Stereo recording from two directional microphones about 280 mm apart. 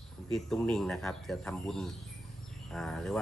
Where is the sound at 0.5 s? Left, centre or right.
Centre.